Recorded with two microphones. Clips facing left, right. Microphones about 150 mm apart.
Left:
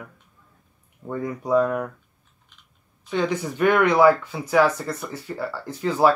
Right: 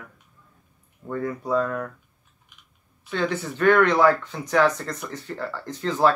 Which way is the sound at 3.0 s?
15° left (ahead or behind).